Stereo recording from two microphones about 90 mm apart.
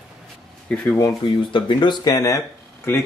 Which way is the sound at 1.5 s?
60° left (ahead or behind).